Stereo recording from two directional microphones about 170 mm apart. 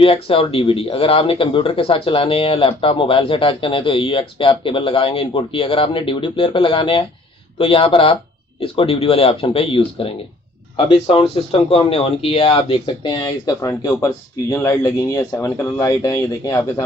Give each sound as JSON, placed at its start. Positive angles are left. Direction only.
{"t": 0.0, "sound": "speech", "side_deg": 35}